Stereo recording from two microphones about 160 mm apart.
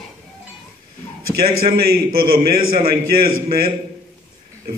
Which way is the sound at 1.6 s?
65° right (ahead or behind).